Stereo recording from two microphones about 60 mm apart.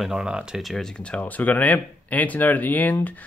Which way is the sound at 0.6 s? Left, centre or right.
Centre.